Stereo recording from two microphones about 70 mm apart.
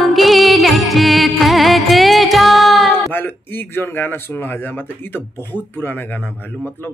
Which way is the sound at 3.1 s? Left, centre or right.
Left.